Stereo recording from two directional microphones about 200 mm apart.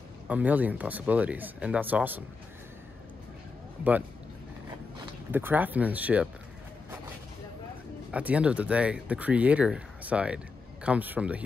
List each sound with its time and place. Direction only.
0.3 s speech: 10° right (ahead or behind)
5.3 s speech: 10° right (ahead or behind)
8.1 s speech: 5° right (ahead or behind)